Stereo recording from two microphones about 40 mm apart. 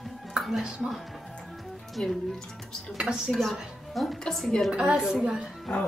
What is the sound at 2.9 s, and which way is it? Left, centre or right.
Speech, centre.